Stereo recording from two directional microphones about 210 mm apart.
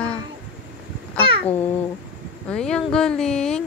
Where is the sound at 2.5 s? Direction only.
5° left (ahead or behind).